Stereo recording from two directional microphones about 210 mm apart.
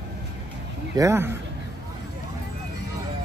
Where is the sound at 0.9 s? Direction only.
15° right (ahead or behind).